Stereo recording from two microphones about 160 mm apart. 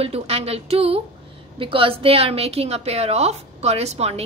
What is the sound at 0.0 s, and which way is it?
A woman's voice, 40° right (ahead or behind).